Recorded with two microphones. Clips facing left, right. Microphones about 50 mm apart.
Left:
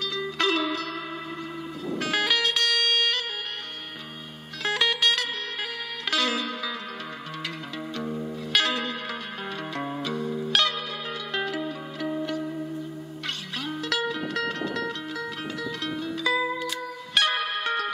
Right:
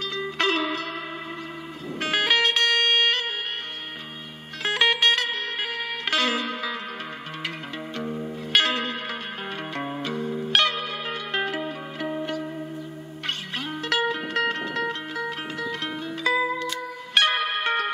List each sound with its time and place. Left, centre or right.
0.1 s music: right
2.0 s music: right
4.6 s music: right
8.0 s music: centre
8.5 s music: right
10.0 s music: right
13.7 s music: right